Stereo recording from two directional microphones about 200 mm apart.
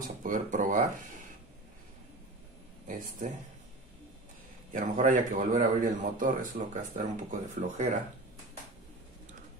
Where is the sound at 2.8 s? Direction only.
40° right (ahead or behind).